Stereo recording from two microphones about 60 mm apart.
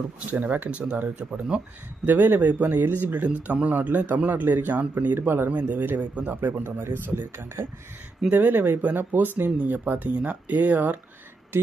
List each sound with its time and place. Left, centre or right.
0.3 s speech: right
5.5 s speech: right
6.6 s speech: right